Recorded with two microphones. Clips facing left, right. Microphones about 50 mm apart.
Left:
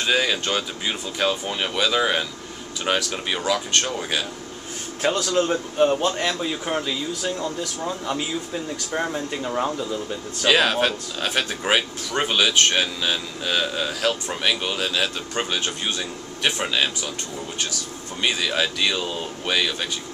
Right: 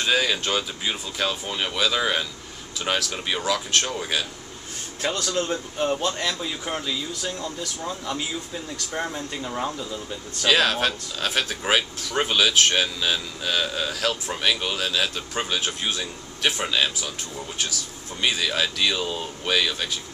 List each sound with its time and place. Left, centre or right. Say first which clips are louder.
0.0 s speech: left 1 dB; centre
5.0 s speech: left 5 dB; centre
8.9 s speech: left 4 dB; centre
18.2 s speech: left 1 dB; centre